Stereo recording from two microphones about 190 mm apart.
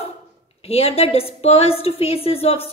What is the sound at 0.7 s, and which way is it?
A woman's voice, 30° left (ahead or behind).